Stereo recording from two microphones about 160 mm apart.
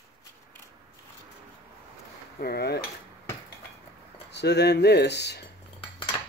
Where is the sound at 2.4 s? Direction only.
85° left.